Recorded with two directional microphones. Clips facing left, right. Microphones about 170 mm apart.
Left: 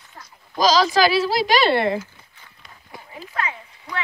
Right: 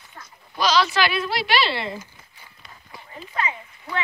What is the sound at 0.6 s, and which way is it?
A woman's voice, 40° left (ahead or behind).